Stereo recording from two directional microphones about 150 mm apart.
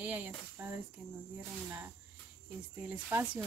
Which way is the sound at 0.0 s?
10° right (ahead or behind).